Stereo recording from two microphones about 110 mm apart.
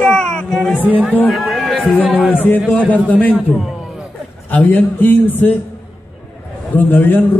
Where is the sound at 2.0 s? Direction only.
10° right (ahead or behind).